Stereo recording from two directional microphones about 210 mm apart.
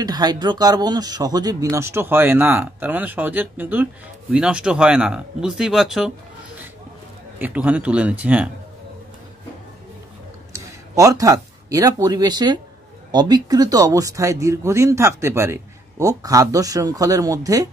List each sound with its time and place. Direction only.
0.0 s speech: 20° right (ahead or behind); by 6.1 s centre (ahead or behind)
7.3 s speech: 10° right (ahead or behind)
10.5 s speech: 15° right (ahead or behind)